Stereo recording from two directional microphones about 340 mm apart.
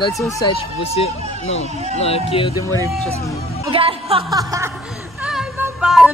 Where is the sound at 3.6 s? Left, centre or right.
Centre.